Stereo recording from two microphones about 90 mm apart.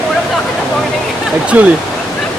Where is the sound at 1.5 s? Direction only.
20° right (ahead or behind).